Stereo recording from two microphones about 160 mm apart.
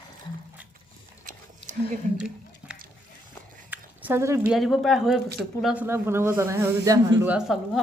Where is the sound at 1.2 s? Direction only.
55° right (ahead or behind).